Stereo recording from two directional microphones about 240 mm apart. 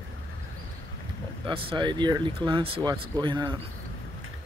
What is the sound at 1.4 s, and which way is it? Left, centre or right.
Speech, right.